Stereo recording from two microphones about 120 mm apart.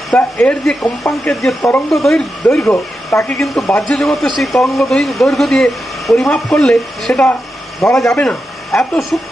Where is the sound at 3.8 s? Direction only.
Centre (ahead or behind).